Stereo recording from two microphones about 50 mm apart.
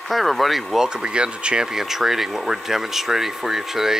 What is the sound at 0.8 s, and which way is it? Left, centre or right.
Speech, centre.